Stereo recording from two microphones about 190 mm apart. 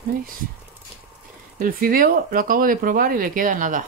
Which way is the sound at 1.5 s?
50° right (ahead or behind).